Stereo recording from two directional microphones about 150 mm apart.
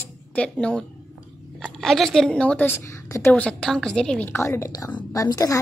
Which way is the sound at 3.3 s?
5° left (ahead or behind).